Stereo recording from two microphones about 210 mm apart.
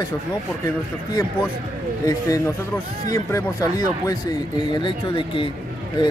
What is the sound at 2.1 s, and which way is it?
Speech, 15° left (ahead or behind).